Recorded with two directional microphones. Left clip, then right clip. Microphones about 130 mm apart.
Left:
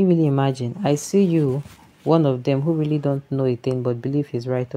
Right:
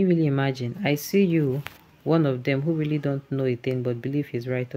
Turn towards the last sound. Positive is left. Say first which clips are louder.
# left 4 dB
turn(degrees=25)  # may be behind; listen again after turning